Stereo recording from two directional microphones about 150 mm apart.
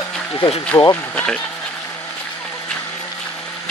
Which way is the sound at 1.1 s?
5° left (ahead or behind).